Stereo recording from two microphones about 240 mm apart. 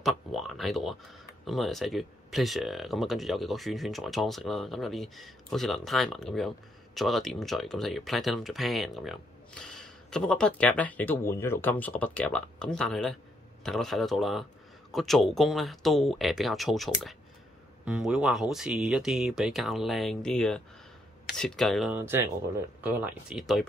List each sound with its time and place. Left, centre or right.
0.0 s speech: centre